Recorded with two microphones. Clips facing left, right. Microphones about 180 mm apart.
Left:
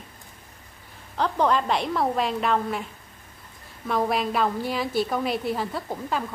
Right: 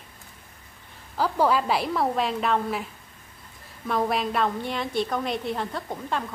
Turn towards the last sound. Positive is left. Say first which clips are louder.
# left 1 dB
turn(degrees=5)  # may be behind; listen again after turning